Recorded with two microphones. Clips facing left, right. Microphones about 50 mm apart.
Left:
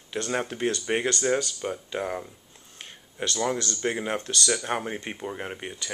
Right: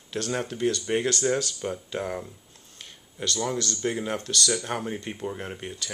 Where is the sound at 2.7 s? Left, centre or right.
Left.